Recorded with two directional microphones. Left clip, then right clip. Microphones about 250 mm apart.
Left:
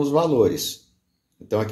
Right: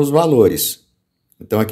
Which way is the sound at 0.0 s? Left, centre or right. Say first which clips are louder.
Right 6 dB; right.